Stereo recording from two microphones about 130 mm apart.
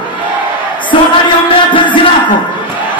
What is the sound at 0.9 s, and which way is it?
Music, 40° left (ahead or behind).